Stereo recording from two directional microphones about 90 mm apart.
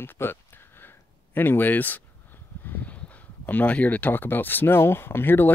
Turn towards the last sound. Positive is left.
turn(degrees=25)  # may be behind; listen again after turning